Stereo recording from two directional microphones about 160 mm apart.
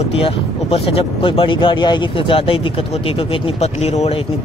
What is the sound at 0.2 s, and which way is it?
Speech, 35° left (ahead or behind).